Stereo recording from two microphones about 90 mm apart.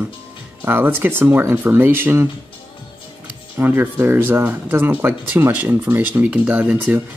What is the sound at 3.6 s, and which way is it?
Speech, 25° right (ahead or behind).